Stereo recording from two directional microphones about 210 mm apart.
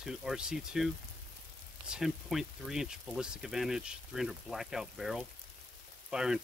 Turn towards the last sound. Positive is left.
turn(degrees=-5)  # may be behind; listen again after turning